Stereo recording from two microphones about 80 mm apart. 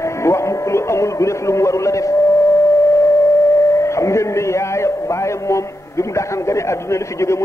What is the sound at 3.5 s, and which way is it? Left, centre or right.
A man's voice, left.